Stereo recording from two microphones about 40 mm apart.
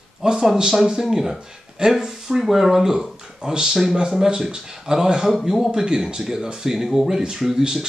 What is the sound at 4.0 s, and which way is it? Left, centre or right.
Speech, centre.